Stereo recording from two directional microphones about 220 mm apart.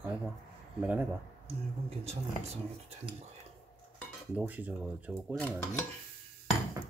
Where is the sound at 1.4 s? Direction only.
25° right (ahead or behind).